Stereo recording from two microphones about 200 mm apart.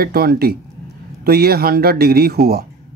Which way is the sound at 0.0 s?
50° right (ahead or behind).